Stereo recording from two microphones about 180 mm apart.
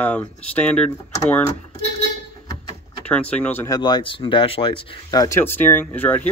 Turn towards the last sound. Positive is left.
turn(degrees=10)  # may be behind; listen again after turning